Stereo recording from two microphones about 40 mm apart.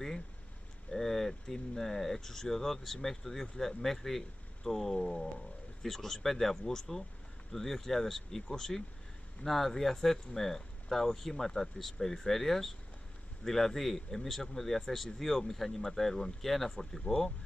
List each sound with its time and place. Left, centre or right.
0.9 s speech: centre